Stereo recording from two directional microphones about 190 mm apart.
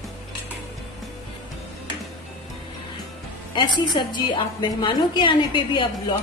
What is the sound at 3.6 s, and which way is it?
A woman's voice, 25° left (ahead or behind).